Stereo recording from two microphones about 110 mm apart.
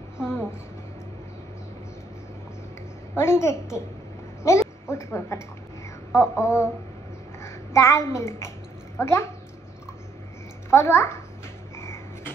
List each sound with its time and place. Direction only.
0.2 s a sound: 5° right (ahead or behind)
3.2 s a woman's voice: 25° left (ahead or behind)
10.7 s speech: 25° left (ahead or behind)
11.7 s cupboard open or close: 25° left (ahead or behind)